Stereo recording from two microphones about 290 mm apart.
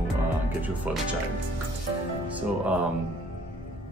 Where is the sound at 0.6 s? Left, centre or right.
Centre.